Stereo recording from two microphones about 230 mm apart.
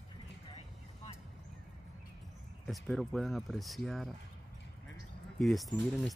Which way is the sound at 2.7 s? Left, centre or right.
Centre.